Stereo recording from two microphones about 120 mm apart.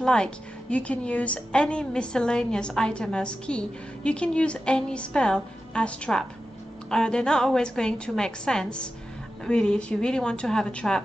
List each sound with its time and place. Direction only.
0.0 s a woman's voice: 5° left (ahead or behind)